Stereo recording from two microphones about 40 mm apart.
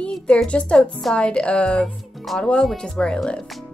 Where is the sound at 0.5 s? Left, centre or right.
Left.